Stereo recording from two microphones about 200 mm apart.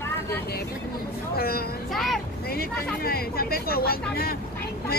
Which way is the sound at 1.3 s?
50° left (ahead or behind).